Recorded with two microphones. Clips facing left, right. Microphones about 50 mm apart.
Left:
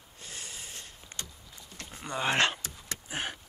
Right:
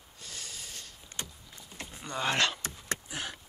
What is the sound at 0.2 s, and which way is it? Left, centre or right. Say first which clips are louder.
Snort: left 1 dB; left.